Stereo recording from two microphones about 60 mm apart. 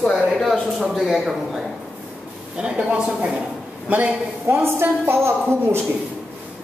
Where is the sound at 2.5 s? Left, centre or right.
Centre.